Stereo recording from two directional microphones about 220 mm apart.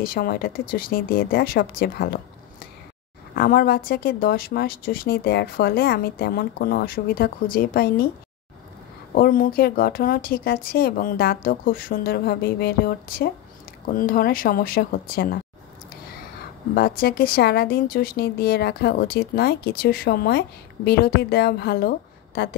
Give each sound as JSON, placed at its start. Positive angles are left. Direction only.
{"t": 0.0, "sound": "speech", "side_deg": 40}
{"t": 3.3, "sound": "speech", "side_deg": 40}
{"t": 9.1, "sound": "speech", "side_deg": 40}
{"t": 16.7, "sound": "speech", "side_deg": 45}